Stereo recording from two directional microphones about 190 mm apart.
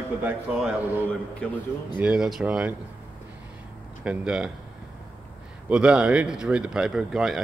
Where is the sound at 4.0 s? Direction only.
5° right (ahead or behind).